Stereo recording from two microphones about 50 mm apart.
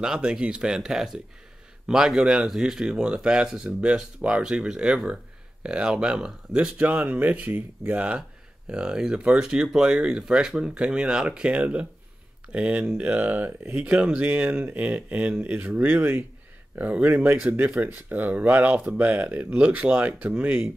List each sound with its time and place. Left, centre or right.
0.2 s speech: right
6.8 s speech: right
8.6 s speech: centre
15.8 s speech: right